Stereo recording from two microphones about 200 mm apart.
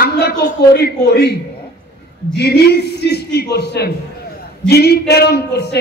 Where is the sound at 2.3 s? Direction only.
55° left (ahead or behind).